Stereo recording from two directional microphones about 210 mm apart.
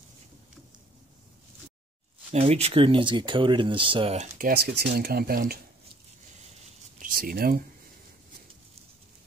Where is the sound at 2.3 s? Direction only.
30° right (ahead or behind).